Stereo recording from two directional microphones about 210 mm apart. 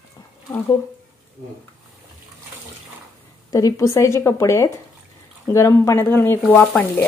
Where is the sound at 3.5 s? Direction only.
15° left (ahead or behind).